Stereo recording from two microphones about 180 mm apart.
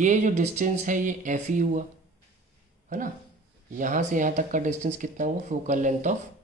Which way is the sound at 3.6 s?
45° right (ahead or behind).